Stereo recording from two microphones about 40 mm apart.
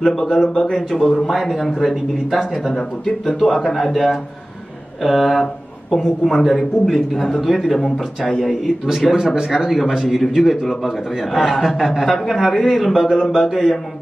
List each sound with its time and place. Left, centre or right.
0.0 s a man's voice: centre
3.5 s a man's voice: centre
3.8 s speech: centre
8.4 s speech: centre
9.1 s speech: centre
9.5 s speech: centre
12.0 s a man's voice: centre